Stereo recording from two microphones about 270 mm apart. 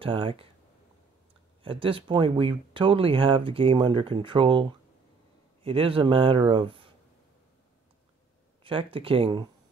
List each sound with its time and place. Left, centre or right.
0.0 s speech: centre
1.6 s speech: centre
8.6 s speech: centre